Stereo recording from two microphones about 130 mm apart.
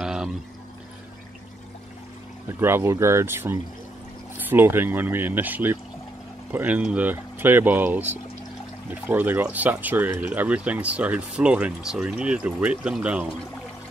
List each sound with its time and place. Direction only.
0.0 s pour: 5° right (ahead or behind)
2.6 s speech: 20° right (ahead or behind)